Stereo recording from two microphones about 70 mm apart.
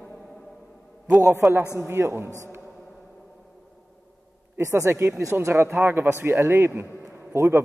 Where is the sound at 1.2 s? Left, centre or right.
Right.